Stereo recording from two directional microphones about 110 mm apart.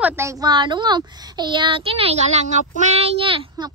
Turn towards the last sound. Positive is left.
turn(degrees=-55)  # may be behind; listen again after turning